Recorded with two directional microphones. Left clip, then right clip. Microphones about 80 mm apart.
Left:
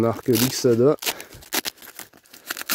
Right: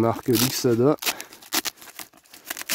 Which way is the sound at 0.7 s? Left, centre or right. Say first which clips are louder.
Left 3 dB; left.